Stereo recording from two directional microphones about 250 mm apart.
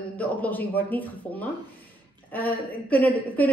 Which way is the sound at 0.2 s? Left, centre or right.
Centre.